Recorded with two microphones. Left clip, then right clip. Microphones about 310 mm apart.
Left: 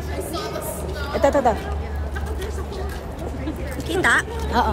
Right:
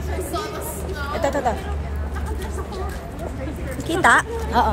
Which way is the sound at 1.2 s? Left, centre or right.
Left.